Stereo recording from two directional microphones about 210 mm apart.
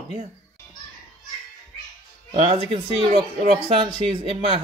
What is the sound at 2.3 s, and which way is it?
Speech, 30° right (ahead or behind).